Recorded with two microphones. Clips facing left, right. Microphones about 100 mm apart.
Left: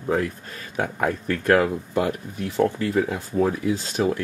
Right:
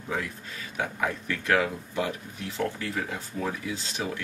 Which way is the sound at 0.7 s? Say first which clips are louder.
Left 5 dB; 45° left (ahead or behind).